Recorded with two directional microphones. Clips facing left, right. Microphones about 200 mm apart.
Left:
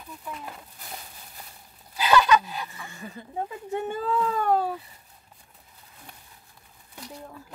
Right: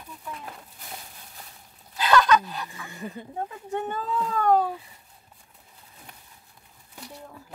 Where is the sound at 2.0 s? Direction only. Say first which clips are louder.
Even; 10° left (ahead or behind).